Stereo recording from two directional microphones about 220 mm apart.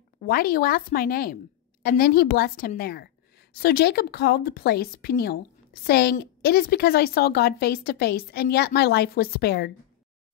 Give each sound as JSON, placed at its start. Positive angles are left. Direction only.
{"t": 0.2, "sound": "a woman's voice", "side_deg": 40}